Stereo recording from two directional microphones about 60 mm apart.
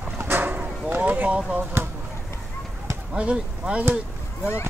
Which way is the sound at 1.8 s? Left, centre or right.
Right.